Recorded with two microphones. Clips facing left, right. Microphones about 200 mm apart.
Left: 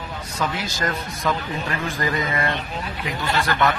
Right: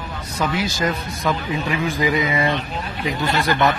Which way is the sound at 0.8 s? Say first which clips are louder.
Right 3 dB; 10° right (ahead or behind).